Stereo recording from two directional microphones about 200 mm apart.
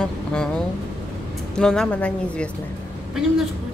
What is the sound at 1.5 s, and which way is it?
Speech, 5° left (ahead or behind).